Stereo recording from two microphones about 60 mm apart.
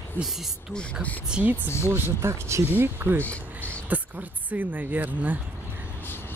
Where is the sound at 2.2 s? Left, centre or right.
Right.